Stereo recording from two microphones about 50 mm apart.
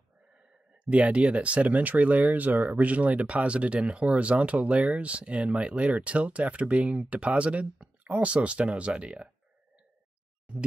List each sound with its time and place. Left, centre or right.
0.8 s speech: right